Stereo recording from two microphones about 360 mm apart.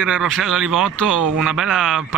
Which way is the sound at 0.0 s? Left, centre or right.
Centre.